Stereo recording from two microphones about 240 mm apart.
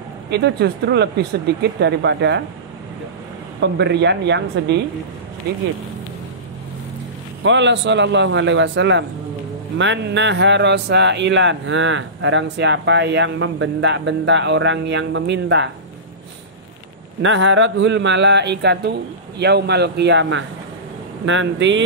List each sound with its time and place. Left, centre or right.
0.3 s speech: right
3.6 s speech: right
7.4 s speech: right
17.2 s speech: right